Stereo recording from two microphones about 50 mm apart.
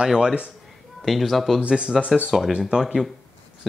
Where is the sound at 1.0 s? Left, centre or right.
Centre.